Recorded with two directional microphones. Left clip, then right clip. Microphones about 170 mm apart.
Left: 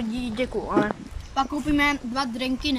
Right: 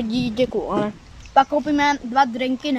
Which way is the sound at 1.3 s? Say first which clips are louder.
Right 8 dB; 50° right (ahead or behind).